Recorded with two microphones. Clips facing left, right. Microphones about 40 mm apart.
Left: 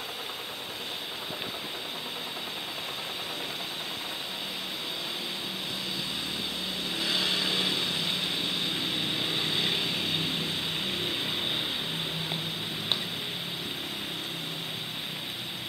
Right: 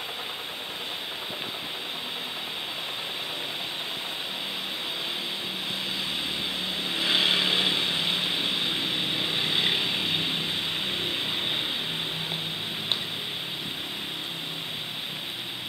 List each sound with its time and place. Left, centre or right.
7.0 s vehicle: right